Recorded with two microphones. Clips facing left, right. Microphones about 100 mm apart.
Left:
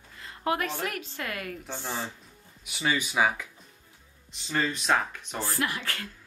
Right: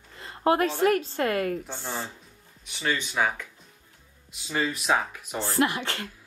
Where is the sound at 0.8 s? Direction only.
35° right (ahead or behind).